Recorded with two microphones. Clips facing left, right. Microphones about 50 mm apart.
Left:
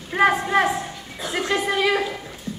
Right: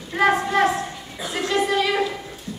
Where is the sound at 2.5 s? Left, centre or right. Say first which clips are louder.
Left 3 dB; left.